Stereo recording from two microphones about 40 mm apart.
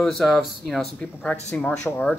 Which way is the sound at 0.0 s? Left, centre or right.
Centre.